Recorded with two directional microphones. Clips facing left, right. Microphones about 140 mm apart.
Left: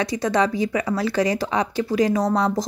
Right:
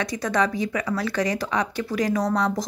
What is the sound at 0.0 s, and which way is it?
Speech, 30° left (ahead or behind).